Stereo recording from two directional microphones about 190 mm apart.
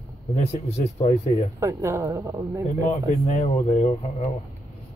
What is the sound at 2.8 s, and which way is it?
Speech, 35° left (ahead or behind).